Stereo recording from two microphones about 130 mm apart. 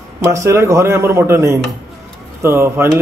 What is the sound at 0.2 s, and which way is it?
A man's voice, 25° right (ahead or behind).